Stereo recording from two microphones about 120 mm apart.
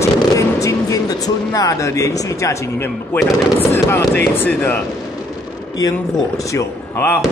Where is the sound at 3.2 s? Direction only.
20° left (ahead or behind).